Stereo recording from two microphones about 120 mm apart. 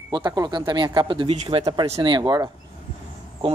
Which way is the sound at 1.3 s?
60° right (ahead or behind).